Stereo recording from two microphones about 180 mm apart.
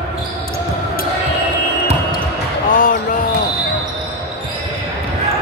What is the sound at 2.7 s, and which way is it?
Music, 50° left (ahead or behind).